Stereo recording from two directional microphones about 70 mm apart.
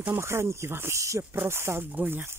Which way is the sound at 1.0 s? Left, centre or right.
Right.